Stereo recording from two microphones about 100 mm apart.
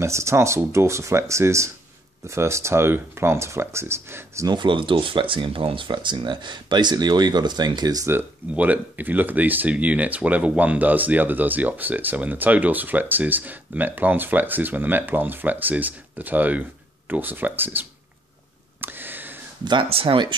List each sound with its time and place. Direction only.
0.0 s speech: 30° right (ahead or behind)
4.5 s speech: 50° right (ahead or behind)
8.1 s speech: 20° right (ahead or behind)
18.8 s a sound: 20° right (ahead or behind)
19.6 s speech: 50° right (ahead or behind)
19.9 s speech: 70° right (ahead or behind)